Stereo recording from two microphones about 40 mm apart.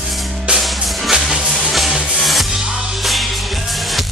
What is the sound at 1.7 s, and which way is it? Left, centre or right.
Music, centre.